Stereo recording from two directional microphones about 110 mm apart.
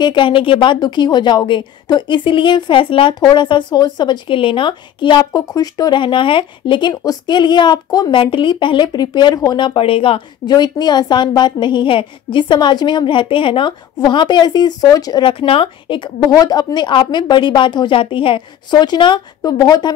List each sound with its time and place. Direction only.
0.0 s a woman's voice: 50° left (ahead or behind)
6.9 s a woman's voice: 40° left (ahead or behind)
8.2 s a woman's voice: 50° left (ahead or behind); by 9.8 s 35° left (ahead or behind)
9.8 s speech: 55° left (ahead or behind)
10.4 s a woman's voice: 40° left (ahead or behind)
15.3 s a woman's voice: 55° left (ahead or behind)
16.3 s a woman's voice: 35° left (ahead or behind)